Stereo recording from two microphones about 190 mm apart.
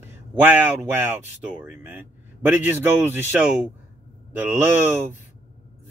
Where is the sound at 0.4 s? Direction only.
10° right (ahead or behind).